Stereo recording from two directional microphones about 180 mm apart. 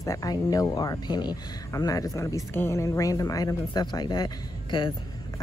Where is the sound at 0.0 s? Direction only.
20° left (ahead or behind).